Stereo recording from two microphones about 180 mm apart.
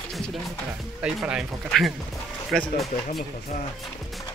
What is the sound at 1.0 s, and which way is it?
Speech, 5° right (ahead or behind).